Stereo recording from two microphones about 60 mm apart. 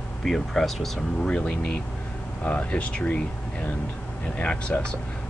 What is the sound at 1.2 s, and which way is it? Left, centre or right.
Speech, centre.